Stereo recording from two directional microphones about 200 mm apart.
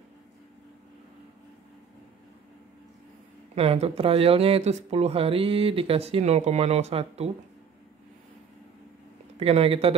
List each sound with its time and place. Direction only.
3.5 s speech: 30° right (ahead or behind)
9.4 s speech: 30° right (ahead or behind)